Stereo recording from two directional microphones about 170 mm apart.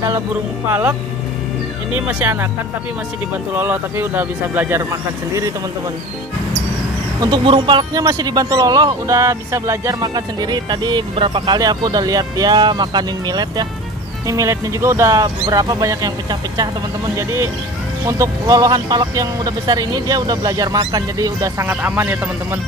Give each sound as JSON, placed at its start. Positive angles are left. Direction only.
{"t": 0.7, "sound": "speech", "side_deg": -15}
{"t": 3.5, "sound": "speech", "side_deg": -10}
{"t": 7.2, "sound": "speech", "side_deg": -25}